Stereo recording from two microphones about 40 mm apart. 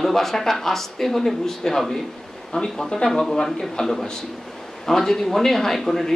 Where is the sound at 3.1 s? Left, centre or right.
Centre.